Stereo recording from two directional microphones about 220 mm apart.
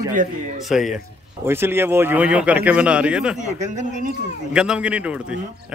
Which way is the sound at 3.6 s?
35° right (ahead or behind).